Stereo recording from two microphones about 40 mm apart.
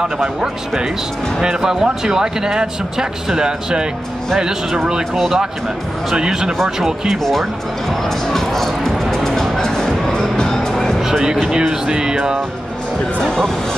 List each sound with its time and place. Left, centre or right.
1.4 s speech: centre
7.1 s speech: centre
7.9 s music: centre
11.0 s music: centre
11.5 s speech: centre
13.2 s speech: centre